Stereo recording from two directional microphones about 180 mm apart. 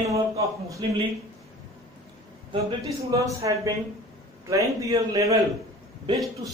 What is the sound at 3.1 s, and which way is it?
A man's voice, 20° right (ahead or behind).